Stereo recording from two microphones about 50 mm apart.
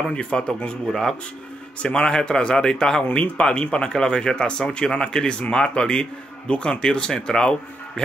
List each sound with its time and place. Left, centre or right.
0.1 s speech: left